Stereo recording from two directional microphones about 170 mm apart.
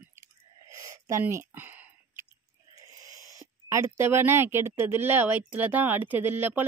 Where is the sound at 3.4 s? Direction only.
15° right (ahead or behind).